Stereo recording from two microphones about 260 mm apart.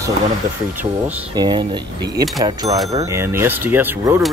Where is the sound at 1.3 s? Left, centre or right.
Centre.